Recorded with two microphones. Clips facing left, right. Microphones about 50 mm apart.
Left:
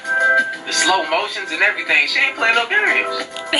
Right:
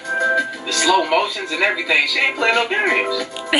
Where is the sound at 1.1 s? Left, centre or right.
Left.